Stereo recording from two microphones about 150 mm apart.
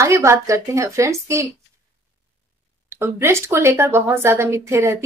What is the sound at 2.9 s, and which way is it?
A woman's voice, 15° right (ahead or behind).